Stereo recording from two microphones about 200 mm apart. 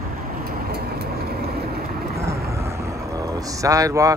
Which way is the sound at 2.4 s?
15° right (ahead or behind).